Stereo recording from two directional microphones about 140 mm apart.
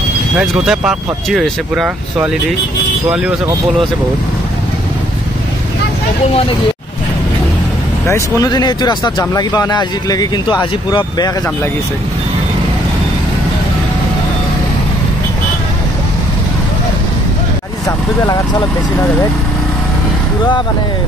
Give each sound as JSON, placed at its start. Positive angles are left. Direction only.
{"t": 0.4, "sound": "speech", "side_deg": -5}
{"t": 8.1, "sound": "speech", "side_deg": 25}
{"t": 17.8, "sound": "speech", "side_deg": 30}